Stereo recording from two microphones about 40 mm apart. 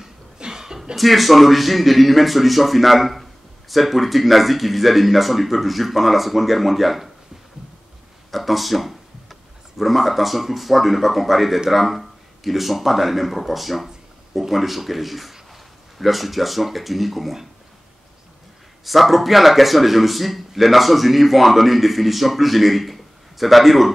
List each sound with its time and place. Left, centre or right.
0.4 s a sound: centre
0.9 s a man's voice: centre
8.3 s a man's voice: centre
18.9 s a man's voice: centre